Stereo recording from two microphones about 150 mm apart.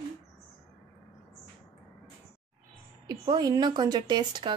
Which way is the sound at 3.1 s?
25° right (ahead or behind).